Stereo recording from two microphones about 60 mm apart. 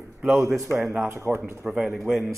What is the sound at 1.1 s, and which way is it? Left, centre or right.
Speech, right.